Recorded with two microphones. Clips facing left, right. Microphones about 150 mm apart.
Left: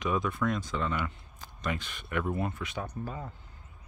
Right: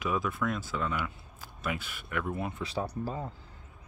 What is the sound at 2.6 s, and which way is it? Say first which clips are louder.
Speech: right 3 dB; 30° right (ahead or behind).